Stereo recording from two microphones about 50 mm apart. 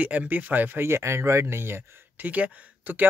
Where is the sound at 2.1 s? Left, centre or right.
Right.